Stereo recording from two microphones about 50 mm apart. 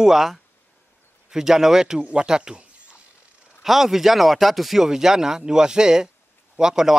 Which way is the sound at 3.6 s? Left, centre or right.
Centre.